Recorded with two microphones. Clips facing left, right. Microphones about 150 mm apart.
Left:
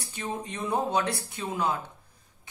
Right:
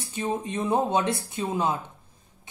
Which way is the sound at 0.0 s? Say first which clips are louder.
Right 6 dB; 25° right (ahead or behind).